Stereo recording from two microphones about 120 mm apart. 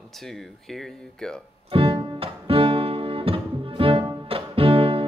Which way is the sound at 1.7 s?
45° right (ahead or behind).